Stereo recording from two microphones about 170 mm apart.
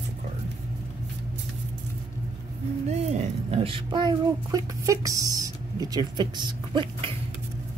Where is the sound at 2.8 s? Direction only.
40° right (ahead or behind).